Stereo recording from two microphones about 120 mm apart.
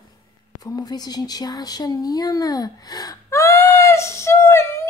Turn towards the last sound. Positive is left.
turn(degrees=20)  # may be behind; listen again after turning